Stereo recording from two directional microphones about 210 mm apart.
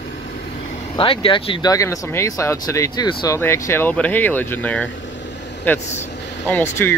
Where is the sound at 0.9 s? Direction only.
25° left (ahead or behind).